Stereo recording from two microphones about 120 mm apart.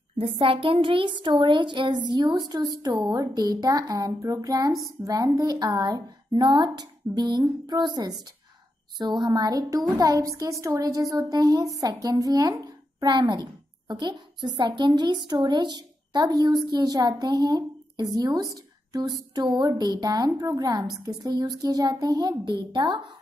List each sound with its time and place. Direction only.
0.2 s a woman's voice: 45° right (ahead or behind)